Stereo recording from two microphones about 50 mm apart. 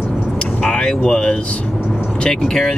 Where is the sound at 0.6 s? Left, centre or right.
Centre.